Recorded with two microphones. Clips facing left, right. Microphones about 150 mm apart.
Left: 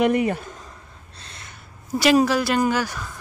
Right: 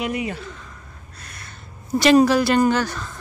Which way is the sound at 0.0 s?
50° left (ahead or behind).